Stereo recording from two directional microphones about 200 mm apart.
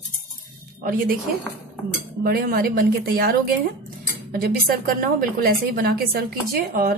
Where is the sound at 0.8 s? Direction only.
45° right (ahead or behind).